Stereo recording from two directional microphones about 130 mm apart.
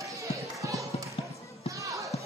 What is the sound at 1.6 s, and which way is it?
Basketball bounce, 25° right (ahead or behind).